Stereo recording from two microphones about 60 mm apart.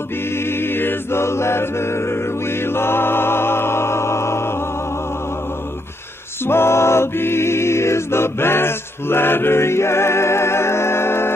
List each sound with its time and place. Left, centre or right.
0.4 s chant: left
6.4 s choir: left